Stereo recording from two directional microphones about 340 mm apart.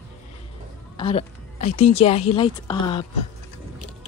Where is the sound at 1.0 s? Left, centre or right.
Centre.